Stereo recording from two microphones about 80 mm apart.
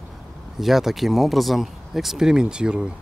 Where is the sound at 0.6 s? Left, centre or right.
Centre.